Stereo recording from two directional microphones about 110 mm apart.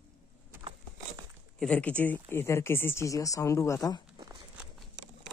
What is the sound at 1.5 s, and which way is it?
Speech, 10° left (ahead or behind).